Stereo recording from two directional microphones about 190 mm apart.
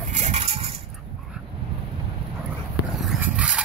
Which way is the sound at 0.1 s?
35° right (ahead or behind).